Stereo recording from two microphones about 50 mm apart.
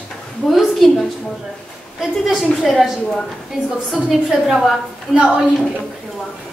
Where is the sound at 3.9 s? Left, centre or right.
Centre.